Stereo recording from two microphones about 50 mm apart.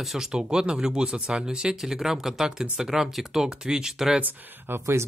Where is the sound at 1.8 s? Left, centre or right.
Centre.